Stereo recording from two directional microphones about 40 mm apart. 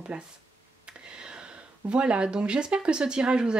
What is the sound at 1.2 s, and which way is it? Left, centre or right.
A woman's voice, right.